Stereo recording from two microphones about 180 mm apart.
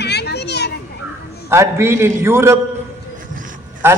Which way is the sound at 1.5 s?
15° right (ahead or behind).